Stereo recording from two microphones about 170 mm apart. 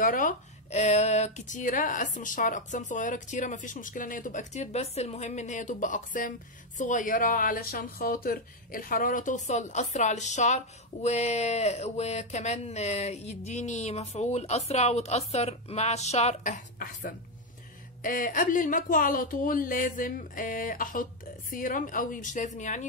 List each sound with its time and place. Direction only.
0.0 s speech: 50° left (ahead or behind)